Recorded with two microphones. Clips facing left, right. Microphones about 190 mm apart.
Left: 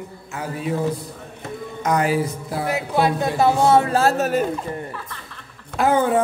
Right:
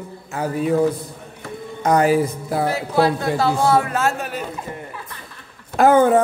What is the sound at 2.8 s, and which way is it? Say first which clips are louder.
A man's voice: left 2 dB; 20° left (ahead or behind).